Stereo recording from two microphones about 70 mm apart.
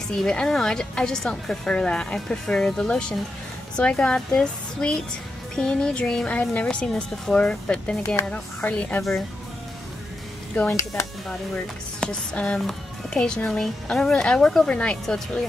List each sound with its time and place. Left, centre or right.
0.2 s a woman's voice: centre
10.7 s speech: left
11.2 s a woman's voice: centre